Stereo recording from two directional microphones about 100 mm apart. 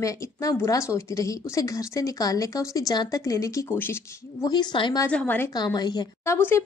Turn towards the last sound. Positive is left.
turn(degrees=25)  # may be behind; listen again after turning